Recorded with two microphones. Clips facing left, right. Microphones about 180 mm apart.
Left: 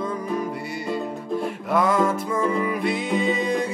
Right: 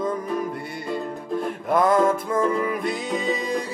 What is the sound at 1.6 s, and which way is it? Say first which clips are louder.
Music: right 2 dB; 45° right (ahead or behind).